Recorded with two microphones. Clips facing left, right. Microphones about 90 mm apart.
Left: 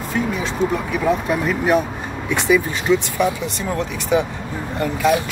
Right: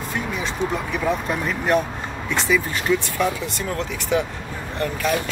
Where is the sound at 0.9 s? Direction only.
Centre (ahead or behind).